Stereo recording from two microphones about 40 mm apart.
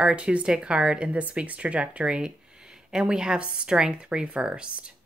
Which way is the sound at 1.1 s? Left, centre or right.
Right.